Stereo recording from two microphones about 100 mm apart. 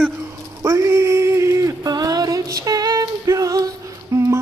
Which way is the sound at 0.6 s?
35° right (ahead or behind).